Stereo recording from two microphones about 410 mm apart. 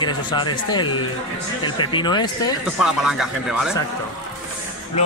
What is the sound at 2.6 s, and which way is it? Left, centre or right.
Speech, centre.